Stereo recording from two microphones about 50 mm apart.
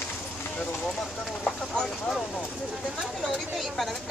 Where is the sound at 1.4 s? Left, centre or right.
Centre.